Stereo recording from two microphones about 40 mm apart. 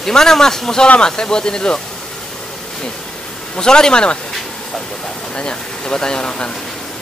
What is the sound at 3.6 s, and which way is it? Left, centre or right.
Speech, centre.